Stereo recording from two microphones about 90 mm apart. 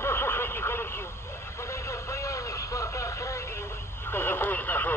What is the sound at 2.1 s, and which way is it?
Speech, 35° left (ahead or behind).